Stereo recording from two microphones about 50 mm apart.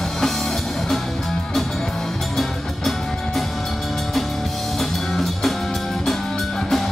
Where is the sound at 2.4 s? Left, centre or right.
Centre.